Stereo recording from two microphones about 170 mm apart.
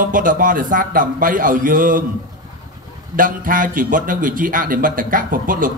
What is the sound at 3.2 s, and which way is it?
A man's voice, 55° right (ahead or behind).